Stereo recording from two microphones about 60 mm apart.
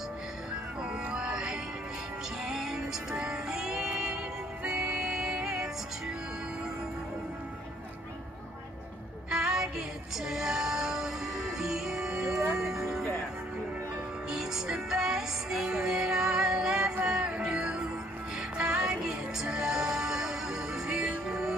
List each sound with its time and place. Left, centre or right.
1.0 s music: centre
9.3 s music: centre
14.3 s music: centre